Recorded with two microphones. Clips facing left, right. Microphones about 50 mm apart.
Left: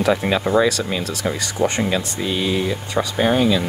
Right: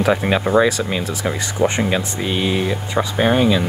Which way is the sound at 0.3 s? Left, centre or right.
Right.